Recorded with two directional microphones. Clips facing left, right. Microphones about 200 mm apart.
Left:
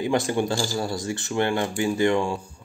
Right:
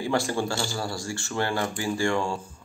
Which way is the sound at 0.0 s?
20° left (ahead or behind).